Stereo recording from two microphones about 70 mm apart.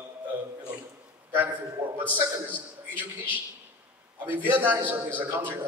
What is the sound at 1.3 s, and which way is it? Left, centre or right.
A man's voice, right.